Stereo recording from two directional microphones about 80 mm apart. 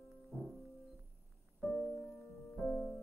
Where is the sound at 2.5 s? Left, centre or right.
Left.